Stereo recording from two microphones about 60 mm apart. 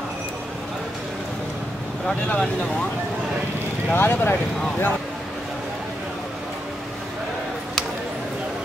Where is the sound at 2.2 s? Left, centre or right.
Centre.